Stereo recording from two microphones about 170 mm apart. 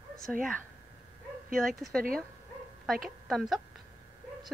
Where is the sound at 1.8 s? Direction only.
Centre (ahead or behind).